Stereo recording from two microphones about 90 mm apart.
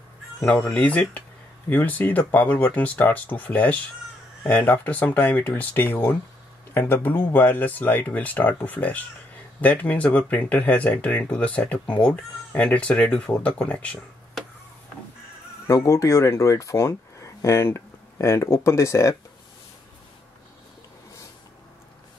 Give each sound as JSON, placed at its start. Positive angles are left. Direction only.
{"t": 0.5, "sound": "speech", "side_deg": 15}
{"t": 14.4, "sound": "a sound", "side_deg": 0}
{"t": 15.6, "sound": "speech", "side_deg": 35}